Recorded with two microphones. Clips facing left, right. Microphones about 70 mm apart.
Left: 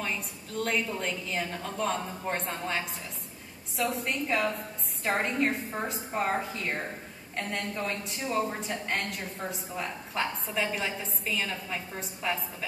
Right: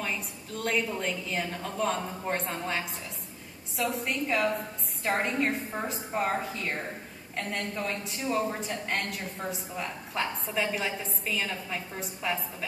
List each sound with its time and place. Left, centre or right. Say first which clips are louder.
0.0 s a woman's voice: even; centre